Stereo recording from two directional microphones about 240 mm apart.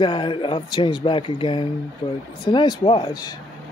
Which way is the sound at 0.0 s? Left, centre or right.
Centre.